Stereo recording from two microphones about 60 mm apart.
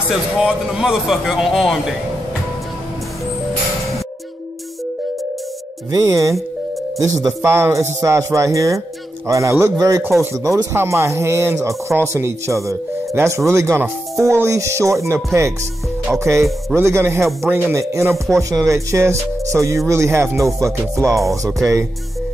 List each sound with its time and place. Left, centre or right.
0.4 s speech: centre
5.9 s speech: right
7.0 s a man's voice: right
7.4 s speech: right
9.7 s speech: right
10.7 s speech: right
17.7 s speech: right